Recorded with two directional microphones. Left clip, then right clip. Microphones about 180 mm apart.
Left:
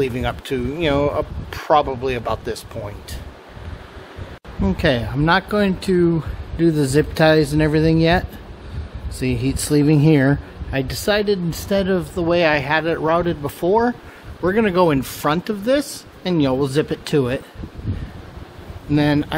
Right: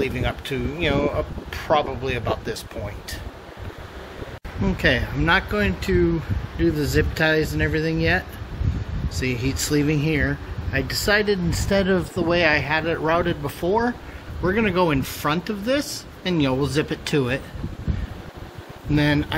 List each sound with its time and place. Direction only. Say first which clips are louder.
0.0 s speech: left 3 dB; 35° left (ahead or behind)
4.6 s speech: left 2 dB; 25° left (ahead or behind)
9.2 s speech: left 2 dB; 25° left (ahead or behind)
11.0 s speech: left 1 dB; 10° left (ahead or behind)
13.7 s speech: left 5 dB; 35° left (ahead or behind)
18.9 s speech: left 3 dB; 30° left (ahead or behind)